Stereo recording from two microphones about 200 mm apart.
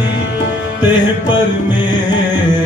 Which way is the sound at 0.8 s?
20° left (ahead or behind).